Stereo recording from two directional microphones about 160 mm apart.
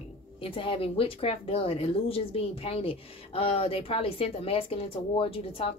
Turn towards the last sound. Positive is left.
turn(degrees=35)  # may be behind; listen again after turning